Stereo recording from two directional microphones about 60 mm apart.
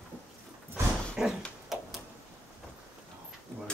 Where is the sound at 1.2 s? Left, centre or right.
Centre.